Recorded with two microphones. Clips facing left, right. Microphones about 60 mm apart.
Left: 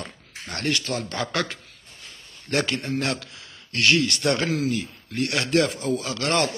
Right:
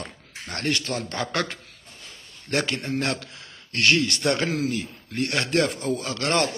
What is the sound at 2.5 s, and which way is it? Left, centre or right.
A man's voice, right.